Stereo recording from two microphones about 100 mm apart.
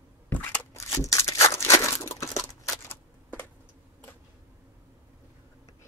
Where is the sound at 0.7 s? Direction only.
30° left (ahead or behind).